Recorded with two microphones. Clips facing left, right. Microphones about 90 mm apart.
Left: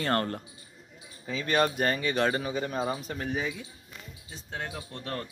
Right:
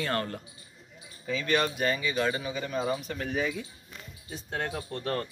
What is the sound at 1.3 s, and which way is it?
Speech, 30° left (ahead or behind).